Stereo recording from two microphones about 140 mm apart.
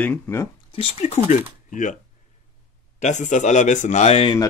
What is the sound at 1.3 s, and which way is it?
Speech, 65° left (ahead or behind).